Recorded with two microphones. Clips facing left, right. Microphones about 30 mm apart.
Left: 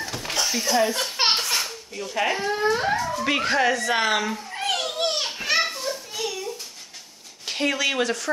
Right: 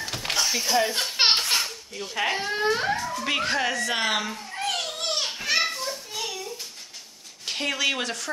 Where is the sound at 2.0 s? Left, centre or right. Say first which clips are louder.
Left 2 dB; centre.